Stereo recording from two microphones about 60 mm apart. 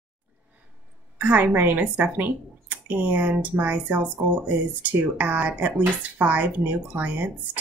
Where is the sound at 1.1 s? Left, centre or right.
Right.